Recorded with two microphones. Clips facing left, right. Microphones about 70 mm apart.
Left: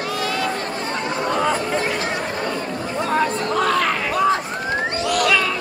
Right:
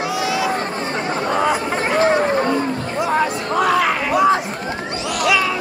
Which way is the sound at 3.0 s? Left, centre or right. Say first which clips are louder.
Right 1 dB; centre.